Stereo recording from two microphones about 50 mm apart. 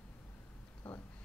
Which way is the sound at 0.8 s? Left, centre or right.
Left.